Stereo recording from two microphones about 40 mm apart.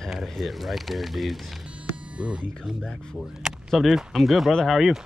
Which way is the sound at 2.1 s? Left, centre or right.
Right.